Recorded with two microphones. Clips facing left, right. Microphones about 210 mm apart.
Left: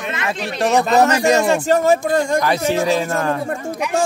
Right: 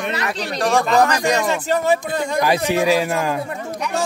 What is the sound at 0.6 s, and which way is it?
Speech, 20° left (ahead or behind).